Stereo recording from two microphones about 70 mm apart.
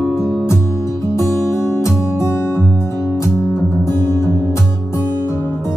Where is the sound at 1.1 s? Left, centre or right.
Left.